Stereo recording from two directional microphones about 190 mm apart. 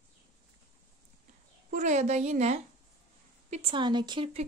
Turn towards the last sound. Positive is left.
turn(degrees=-25)  # may be behind; listen again after turning